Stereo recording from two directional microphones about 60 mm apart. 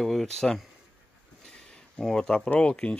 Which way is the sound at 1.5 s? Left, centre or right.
Centre.